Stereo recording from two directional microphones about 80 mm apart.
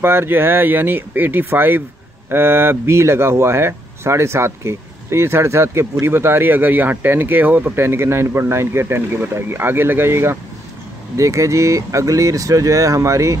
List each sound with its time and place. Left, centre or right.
0.0 s speech: right